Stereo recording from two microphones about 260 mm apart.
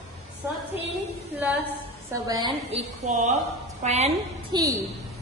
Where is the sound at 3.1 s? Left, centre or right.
Right.